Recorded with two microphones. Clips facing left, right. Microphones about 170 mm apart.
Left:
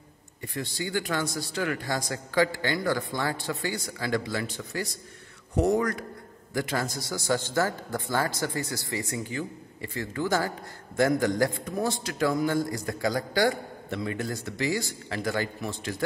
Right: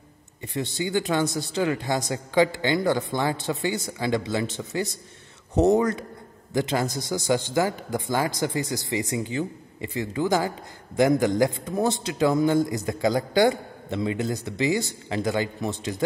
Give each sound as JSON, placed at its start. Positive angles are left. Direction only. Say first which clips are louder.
{"t": 0.4, "sound": "a man's voice", "louder": "right 5 dB", "side_deg": -20}